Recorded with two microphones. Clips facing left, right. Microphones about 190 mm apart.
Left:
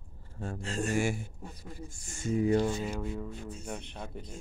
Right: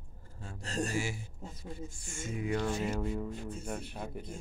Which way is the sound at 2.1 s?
35° left (ahead or behind).